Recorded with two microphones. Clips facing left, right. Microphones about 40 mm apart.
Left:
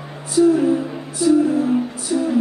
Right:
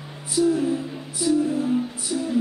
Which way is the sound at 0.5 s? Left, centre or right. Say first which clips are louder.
Left 6 dB; centre.